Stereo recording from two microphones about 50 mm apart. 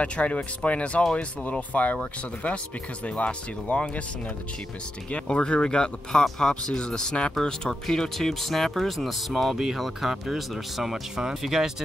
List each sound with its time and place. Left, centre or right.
0.0 s speech: left
3.2 s speech: left
5.1 s speech: left; by 11.7 s centre